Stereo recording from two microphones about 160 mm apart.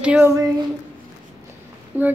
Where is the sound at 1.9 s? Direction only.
10° right (ahead or behind).